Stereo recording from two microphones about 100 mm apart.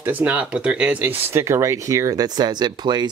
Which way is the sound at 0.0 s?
15° right (ahead or behind).